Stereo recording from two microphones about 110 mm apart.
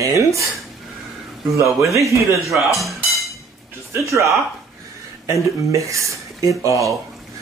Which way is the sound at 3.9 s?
30° right (ahead or behind).